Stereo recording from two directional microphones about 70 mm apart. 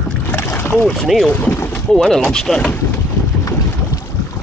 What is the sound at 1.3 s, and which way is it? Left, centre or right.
Speech, left.